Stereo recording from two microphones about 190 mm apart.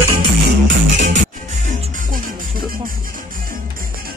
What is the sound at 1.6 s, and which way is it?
Music, 40° right (ahead or behind).